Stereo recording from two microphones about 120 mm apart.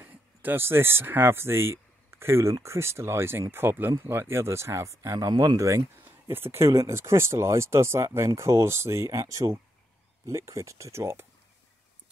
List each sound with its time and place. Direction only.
0.0 s speech: 15° right (ahead or behind)
6.0 s speech: 20° right (ahead or behind)